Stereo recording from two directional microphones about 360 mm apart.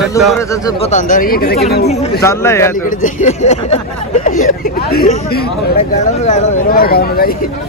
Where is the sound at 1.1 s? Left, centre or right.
Left.